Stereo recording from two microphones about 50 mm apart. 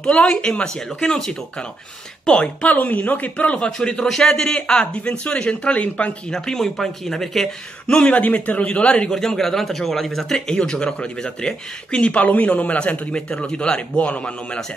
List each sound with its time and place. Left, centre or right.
0.0 s a man's voice: centre
2.2 s a man's voice: left
2.7 s a man's voice: left
6.3 s a man's voice: centre
7.8 s a man's voice: left
9.1 s a man's voice: centre